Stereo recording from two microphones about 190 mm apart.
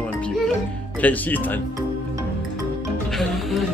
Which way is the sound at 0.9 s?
10° left (ahead or behind).